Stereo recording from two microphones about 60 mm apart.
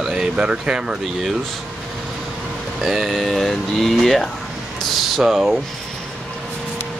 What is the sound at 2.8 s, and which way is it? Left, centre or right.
Speech, centre.